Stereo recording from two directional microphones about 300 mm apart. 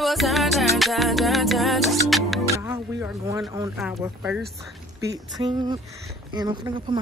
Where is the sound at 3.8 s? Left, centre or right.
Centre.